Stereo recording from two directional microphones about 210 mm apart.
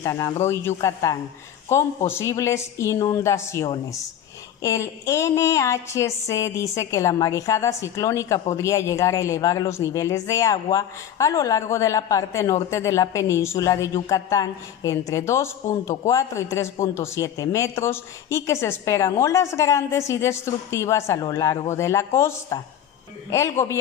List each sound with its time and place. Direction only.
0.0 s a woman's voice: 15° left (ahead or behind)